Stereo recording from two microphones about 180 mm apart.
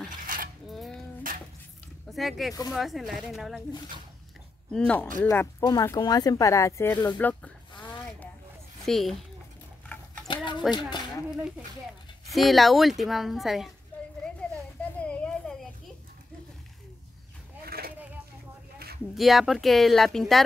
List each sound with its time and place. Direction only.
0.3 s dishes: 50° right (ahead or behind)
0.7 s dishes: centre (ahead or behind)
1.3 s dishes: 50° right (ahead or behind)
2.1 s speech: centre (ahead or behind)
4.7 s speech: 5° left (ahead or behind)
8.8 s speech: centre (ahead or behind)
9.9 s a sound: 10° left (ahead or behind)
10.2 s a sound: 25° left (ahead or behind)
10.7 s speech: 25° left (ahead or behind)
11.2 s speech: 5° right (ahead or behind)
15.0 s a sound: 5° left (ahead or behind)
17.6 s a sound: 60° right (ahead or behind)
19.1 s speech: centre (ahead or behind)